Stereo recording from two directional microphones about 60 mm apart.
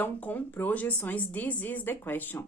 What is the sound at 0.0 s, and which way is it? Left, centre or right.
A woman's voice, left.